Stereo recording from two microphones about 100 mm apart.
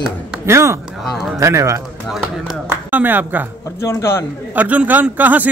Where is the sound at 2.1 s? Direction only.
Centre (ahead or behind).